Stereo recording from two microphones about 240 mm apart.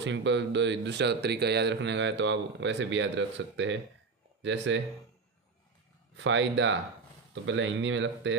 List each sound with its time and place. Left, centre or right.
0.0 s speech: right
6.1 s speech: right